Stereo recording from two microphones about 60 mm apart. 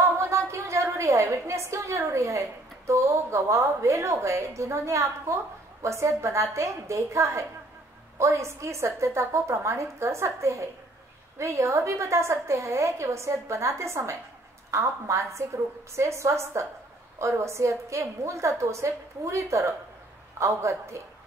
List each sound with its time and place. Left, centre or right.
0.2 s a woman's voice: right